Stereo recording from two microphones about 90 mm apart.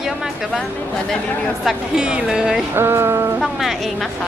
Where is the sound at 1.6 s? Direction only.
10° right (ahead or behind).